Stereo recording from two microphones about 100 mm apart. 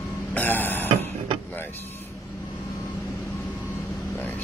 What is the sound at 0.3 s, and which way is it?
Burping, 20° left (ahead or behind).